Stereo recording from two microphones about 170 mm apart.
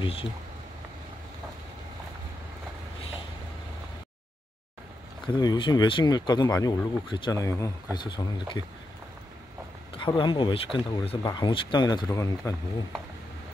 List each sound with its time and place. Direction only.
0.0 s speech: 30° left (ahead or behind)
5.2 s speech: 25° left (ahead or behind)
9.9 s speech: 30° left (ahead or behind)